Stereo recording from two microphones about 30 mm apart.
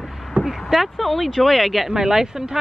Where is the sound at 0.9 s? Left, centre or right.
Centre.